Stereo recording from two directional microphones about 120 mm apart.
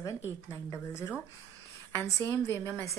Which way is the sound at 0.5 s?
25° left (ahead or behind).